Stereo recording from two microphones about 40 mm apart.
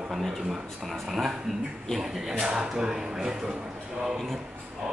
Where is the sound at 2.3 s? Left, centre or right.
Right.